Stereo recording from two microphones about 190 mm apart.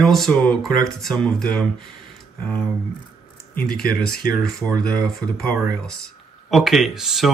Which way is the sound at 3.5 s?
50° left (ahead or behind).